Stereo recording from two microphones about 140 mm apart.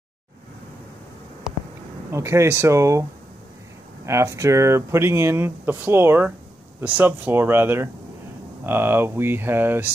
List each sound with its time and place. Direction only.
2.1 s speech: 20° right (ahead or behind)